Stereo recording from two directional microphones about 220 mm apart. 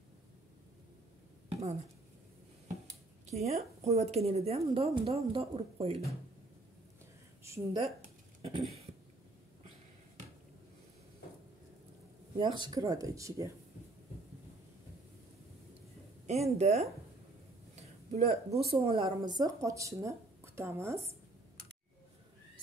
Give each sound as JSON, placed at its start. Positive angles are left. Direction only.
{"t": 1.5, "sound": "a sound", "side_deg": -30}
{"t": 3.3, "sound": "a woman's voice", "side_deg": -30}
{"t": 7.4, "sound": "a woman's voice", "side_deg": -10}
{"t": 7.8, "sound": "a sound", "side_deg": -30}
{"t": 12.4, "sound": "speech", "side_deg": -20}
{"t": 16.3, "sound": "a woman's voice", "side_deg": -30}